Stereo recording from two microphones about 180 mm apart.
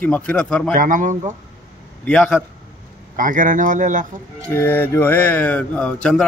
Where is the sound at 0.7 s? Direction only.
45° right (ahead or behind).